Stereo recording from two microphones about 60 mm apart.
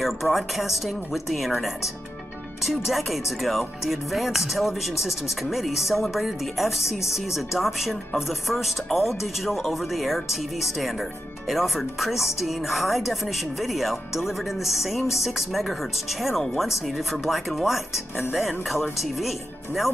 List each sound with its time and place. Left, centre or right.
0.0 s speech: centre
2.6 s speech: centre